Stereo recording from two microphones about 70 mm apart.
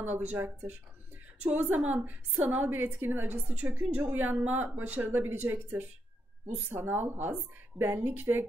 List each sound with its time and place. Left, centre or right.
0.0 s a woman's voice: right
6.7 s a woman's voice: right